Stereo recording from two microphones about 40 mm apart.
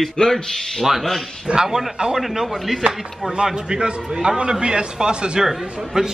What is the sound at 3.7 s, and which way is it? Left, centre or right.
A man's voice, right.